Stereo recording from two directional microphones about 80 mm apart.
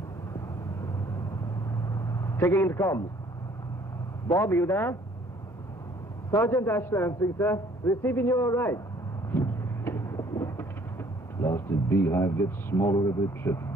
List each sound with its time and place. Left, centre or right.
1.7 s vehicle: left
4.4 s speech: left
6.4 s a man's voice: left
9.3 s a sound: left